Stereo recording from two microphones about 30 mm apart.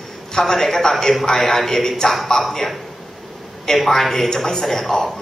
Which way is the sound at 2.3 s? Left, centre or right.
Left.